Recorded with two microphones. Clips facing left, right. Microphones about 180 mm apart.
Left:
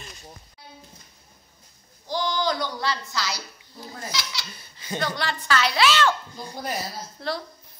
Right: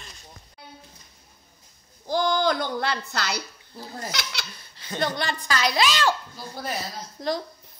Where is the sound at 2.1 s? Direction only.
50° right (ahead or behind).